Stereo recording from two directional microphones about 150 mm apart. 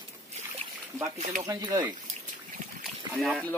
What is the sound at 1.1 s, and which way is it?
Speech, 50° right (ahead or behind).